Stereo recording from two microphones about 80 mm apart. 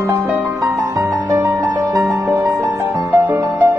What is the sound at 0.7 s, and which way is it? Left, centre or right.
Music, right.